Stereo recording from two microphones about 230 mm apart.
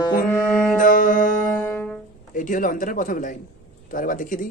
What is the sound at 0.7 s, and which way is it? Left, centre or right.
Music, left.